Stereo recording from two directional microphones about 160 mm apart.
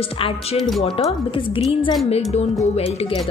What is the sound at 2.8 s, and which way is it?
Speech, 35° left (ahead or behind).